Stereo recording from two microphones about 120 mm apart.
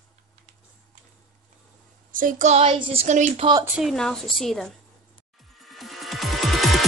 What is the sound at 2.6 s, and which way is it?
Speech, 50° right (ahead or behind).